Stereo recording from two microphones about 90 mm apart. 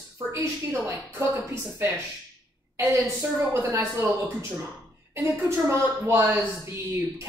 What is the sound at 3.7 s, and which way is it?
Speech, 35° right (ahead or behind).